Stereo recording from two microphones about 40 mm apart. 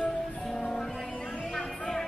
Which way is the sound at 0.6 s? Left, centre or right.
Centre.